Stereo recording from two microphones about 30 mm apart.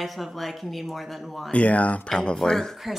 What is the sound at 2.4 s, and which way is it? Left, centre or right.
Speech, centre.